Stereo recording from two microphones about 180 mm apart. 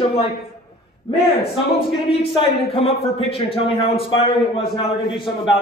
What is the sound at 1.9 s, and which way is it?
Speech, 30° left (ahead or behind).